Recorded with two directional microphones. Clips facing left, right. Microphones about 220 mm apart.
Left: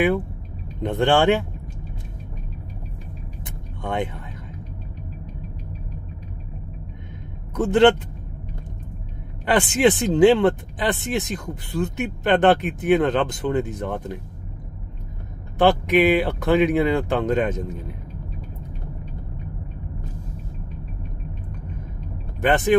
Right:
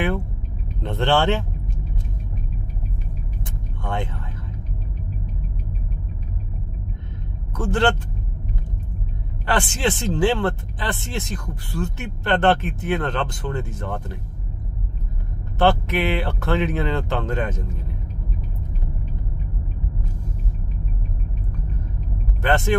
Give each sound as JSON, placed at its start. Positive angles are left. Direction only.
{"t": 0.8, "sound": "speech", "side_deg": 15}
{"t": 3.8, "sound": "speech", "side_deg": 20}
{"t": 7.5, "sound": "speech", "side_deg": 20}
{"t": 9.5, "sound": "speech", "side_deg": 20}
{"t": 15.6, "sound": "speech", "side_deg": 15}
{"t": 22.4, "sound": "speech", "side_deg": 15}